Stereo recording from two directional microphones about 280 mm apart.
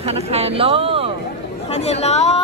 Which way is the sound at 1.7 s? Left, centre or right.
Left.